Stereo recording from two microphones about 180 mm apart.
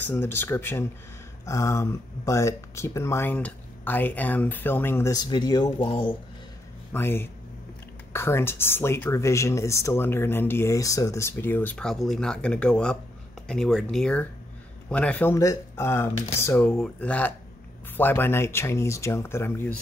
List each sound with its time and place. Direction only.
0.0 s speech: 10° left (ahead or behind)
6.9 s speech: 10° left (ahead or behind)